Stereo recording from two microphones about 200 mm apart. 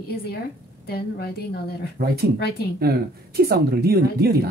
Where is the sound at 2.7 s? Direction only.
50° right (ahead or behind).